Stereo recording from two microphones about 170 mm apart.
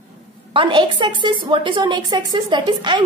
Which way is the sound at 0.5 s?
30° right (ahead or behind).